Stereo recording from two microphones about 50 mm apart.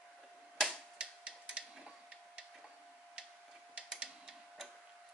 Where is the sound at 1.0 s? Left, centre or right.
Centre.